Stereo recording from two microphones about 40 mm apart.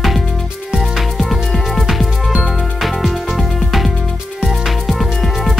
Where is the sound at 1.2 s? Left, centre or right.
Centre.